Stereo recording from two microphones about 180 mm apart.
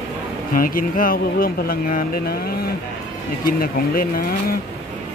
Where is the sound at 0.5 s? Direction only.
50° left (ahead or behind).